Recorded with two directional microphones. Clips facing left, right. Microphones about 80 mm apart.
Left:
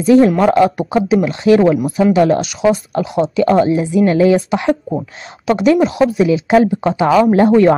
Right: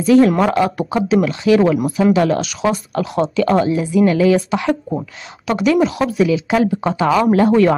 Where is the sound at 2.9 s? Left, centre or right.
Left.